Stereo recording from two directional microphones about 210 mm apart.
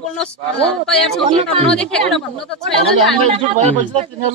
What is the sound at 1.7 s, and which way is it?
A woman's voice, 5° left (ahead or behind).